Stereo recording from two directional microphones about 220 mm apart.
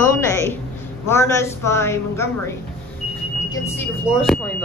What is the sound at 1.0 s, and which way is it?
A woman's voice, 10° left (ahead or behind).